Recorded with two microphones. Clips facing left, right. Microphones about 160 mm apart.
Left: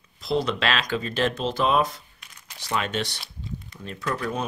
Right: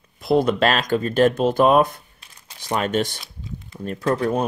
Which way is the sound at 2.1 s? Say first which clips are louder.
Even; 30° right (ahead or behind).